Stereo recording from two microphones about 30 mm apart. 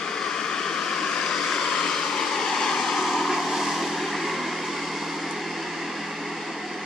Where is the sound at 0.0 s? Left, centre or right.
Left.